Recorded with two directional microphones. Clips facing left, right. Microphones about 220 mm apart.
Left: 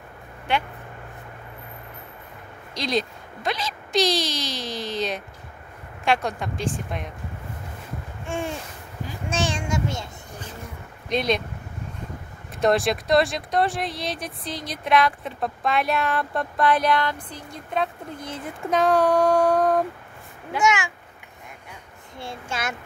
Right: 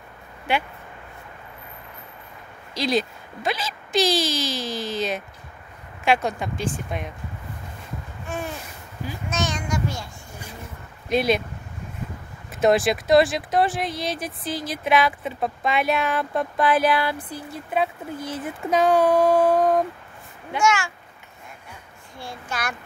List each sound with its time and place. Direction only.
2.7 s speech: 5° right (ahead or behind)
8.3 s a child's voice: 25° left (ahead or behind)
9.3 s child singing: 30° left (ahead or behind)
11.1 s speech: 5° right (ahead or behind)
12.5 s speech: centre (ahead or behind)
20.6 s speech: 15° left (ahead or behind)
22.2 s a child's voice: 25° left (ahead or behind)